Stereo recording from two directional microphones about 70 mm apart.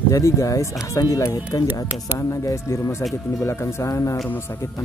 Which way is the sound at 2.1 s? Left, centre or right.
Left.